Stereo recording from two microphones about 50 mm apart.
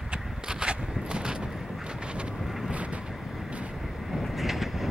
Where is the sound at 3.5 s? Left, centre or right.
Right.